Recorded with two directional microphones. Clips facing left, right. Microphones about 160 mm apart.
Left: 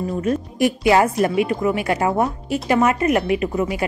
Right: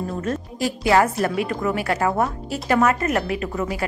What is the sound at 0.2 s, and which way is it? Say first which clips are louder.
Speech: left 8 dB; 15° left (ahead or behind).